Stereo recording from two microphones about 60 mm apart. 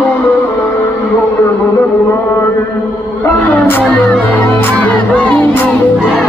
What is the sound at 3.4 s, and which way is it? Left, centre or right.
Music, left.